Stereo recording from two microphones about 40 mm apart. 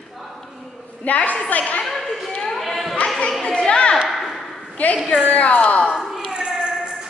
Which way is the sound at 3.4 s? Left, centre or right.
Left.